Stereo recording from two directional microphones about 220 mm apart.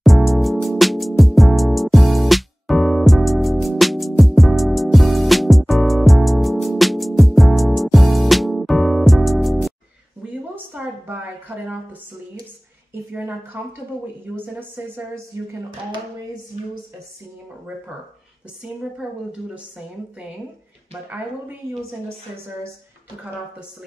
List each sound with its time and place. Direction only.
0.0 s music: centre (ahead or behind)
10.5 s a sound: 10° right (ahead or behind)
13.1 s speech: 10° right (ahead or behind)
19.0 s a woman's voice: 5° right (ahead or behind)